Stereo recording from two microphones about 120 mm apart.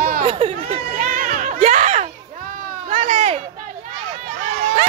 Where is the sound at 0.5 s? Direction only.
55° right (ahead or behind); by 4.3 s 90° right.